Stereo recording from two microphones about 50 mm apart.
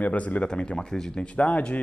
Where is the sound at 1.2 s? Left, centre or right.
Left.